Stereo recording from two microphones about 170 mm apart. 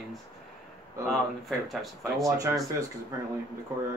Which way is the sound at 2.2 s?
20° right (ahead or behind).